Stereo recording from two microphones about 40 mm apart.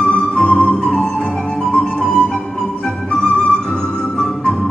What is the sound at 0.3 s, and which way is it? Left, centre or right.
Music, left.